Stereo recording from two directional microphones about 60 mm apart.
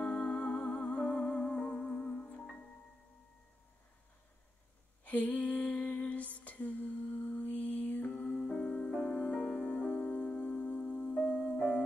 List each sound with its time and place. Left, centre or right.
0.0 s music: centre
5.0 s lullaby: left
9.0 s music: centre